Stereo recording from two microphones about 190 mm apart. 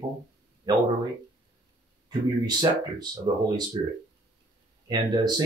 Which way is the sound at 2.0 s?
20° right (ahead or behind).